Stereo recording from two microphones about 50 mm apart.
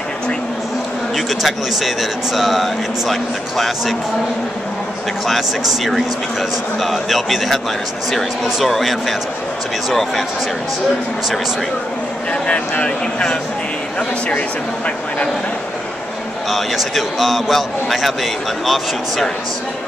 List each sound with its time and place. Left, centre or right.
1.1 s a man's voice: centre
5.2 s a man's voice: centre
12.3 s speech: left
16.4 s a man's voice: centre